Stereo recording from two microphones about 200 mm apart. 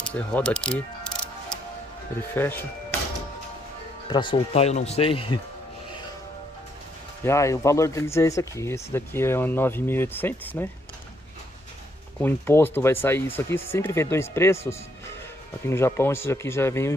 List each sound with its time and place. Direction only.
0.0 s music: 5° left (ahead or behind)
2.3 s speech: 10° left (ahead or behind)
4.1 s speech: 25° left (ahead or behind)
7.2 s speech: 15° left (ahead or behind)
12.2 s speech: 10° left (ahead or behind)